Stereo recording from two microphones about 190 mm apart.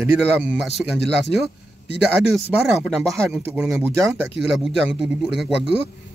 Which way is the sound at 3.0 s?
15° right (ahead or behind).